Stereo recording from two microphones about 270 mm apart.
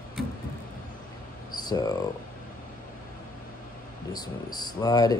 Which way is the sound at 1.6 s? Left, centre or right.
Centre.